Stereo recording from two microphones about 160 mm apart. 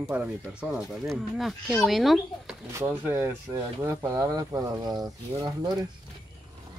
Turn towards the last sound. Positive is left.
turn(degrees=-25)  # may be behind; listen again after turning